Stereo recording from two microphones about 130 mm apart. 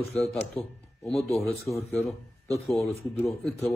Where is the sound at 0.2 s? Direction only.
5° left (ahead or behind).